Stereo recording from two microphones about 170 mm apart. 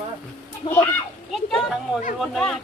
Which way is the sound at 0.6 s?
30° left (ahead or behind).